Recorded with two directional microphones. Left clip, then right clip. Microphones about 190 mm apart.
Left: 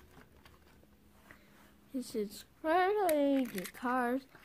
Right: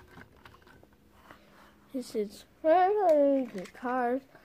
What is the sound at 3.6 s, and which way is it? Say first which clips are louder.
Speech: right 3 dB; 45° left (ahead or behind).